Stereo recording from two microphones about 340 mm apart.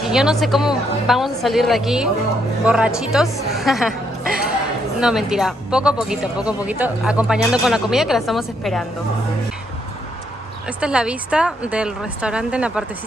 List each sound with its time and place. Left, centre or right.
0.0 s speech: centre
5.0 s speech: centre
10.8 s speech: centre